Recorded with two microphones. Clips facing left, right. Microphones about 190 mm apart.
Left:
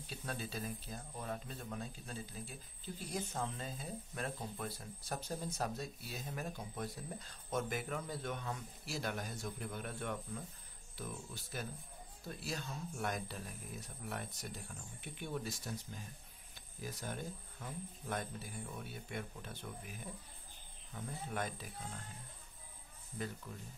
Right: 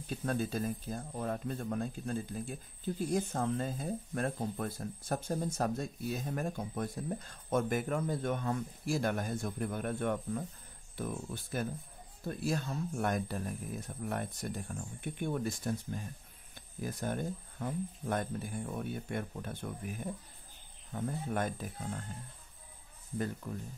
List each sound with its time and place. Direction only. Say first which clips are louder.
0.0 s speech: right 10 dB; 50° right (ahead or behind)
23.1 s speech: right 7 dB; 50° right (ahead or behind)